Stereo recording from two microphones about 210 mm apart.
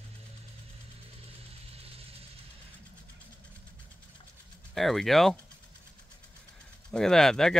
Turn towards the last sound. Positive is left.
turn(degrees=0)  # may be behind; listen again after turning